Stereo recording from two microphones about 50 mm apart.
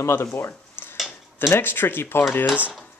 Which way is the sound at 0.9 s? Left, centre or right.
Centre.